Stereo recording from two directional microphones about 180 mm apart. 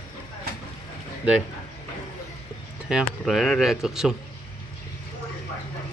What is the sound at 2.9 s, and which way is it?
Speech, centre (ahead or behind).